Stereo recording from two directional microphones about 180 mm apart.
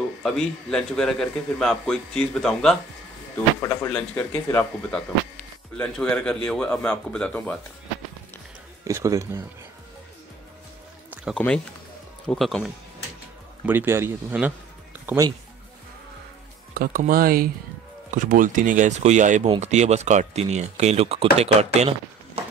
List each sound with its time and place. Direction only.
0.2 s a man's voice: 5° left (ahead or behind)
8.8 s speech: 15° right (ahead or behind)
11.3 s a man's voice: 5° left (ahead or behind)
13.7 s speech: 10° right (ahead or behind)
16.7 s speech: 50° right (ahead or behind); by 21.6 s 35° right (ahead or behind)
21.7 s a sound: 35° right (ahead or behind)